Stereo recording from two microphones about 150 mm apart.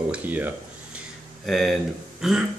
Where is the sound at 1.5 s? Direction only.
Centre (ahead or behind).